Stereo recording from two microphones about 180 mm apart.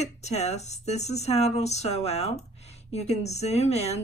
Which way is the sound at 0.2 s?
35° left (ahead or behind).